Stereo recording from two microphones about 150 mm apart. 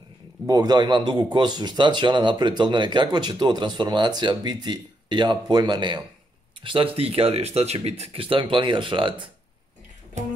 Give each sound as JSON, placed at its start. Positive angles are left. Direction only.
{"t": 0.5, "sound": "a man's voice", "side_deg": -25}